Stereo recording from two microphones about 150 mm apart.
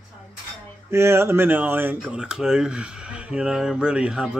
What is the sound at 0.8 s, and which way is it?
Speech, 15° right (ahead or behind).